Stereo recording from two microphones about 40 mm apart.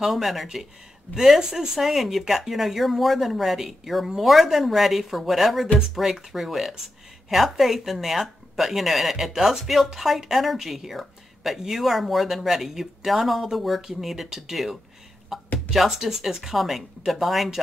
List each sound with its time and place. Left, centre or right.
0.0 s speech: centre
1.4 s speech: centre
1.8 s speech: centre
15.3 s a sound: centre
15.7 s speech: centre